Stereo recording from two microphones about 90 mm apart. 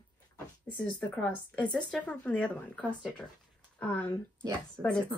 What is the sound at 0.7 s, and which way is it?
Speech, 15° left (ahead or behind).